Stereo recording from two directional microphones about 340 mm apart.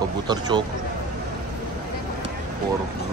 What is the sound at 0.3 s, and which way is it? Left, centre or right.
Speech, centre.